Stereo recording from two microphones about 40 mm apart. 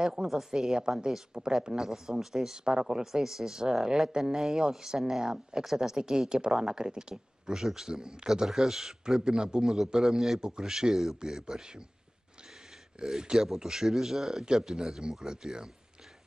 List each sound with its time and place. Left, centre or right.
0.0 s a woman's voice: centre
8.3 s speech: centre
9.2 s a man's voice: centre
13.0 s speech: centre